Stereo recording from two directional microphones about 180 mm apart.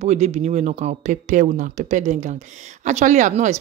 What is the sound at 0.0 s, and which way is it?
Speech, 35° right (ahead or behind).